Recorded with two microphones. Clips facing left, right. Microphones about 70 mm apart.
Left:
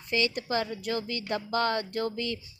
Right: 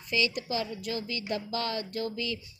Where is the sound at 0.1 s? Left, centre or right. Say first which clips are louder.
Left 2 dB; left.